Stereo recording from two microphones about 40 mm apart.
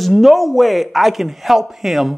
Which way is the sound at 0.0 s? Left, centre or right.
Centre.